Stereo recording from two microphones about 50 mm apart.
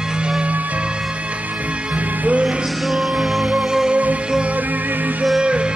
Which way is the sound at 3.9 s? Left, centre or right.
Right.